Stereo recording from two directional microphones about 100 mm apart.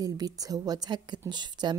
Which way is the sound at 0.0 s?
40° right (ahead or behind).